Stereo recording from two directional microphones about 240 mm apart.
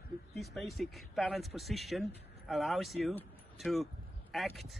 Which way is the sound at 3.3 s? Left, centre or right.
Centre.